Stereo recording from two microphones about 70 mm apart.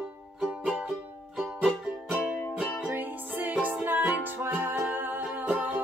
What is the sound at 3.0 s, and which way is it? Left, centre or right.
Music, right.